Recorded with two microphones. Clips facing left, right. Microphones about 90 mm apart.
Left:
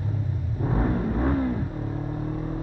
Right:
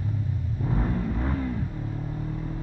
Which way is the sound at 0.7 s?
30° left (ahead or behind).